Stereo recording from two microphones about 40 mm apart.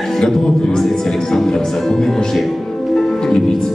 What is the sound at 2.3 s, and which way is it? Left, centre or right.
Music, centre.